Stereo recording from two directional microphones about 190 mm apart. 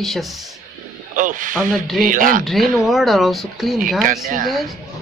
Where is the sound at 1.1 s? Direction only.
45° right (ahead or behind).